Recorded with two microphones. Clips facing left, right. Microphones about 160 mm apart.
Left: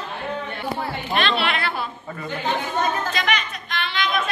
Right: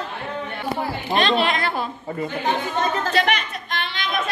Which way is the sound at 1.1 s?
40° right (ahead or behind).